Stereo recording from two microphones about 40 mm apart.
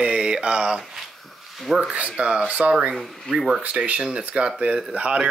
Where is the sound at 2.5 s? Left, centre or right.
Right.